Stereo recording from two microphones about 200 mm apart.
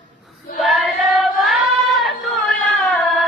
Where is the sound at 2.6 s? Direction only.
Centre (ahead or behind).